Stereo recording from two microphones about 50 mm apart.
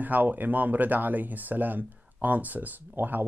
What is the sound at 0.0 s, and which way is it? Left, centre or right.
Speech, right.